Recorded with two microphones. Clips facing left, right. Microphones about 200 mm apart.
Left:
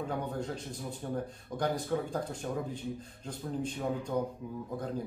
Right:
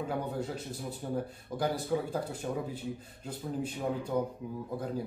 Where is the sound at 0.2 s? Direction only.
5° right (ahead or behind).